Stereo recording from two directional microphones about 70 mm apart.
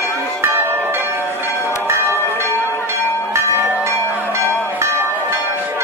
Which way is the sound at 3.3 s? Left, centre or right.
Right.